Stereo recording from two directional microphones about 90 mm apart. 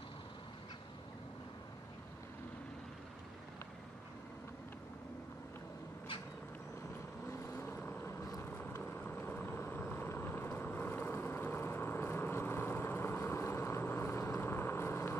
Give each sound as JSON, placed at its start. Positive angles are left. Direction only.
{"t": 7.2, "sound": "vehicle", "side_deg": 30}